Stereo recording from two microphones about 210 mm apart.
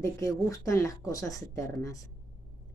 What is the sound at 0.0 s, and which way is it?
A woman's voice, 15° left (ahead or behind).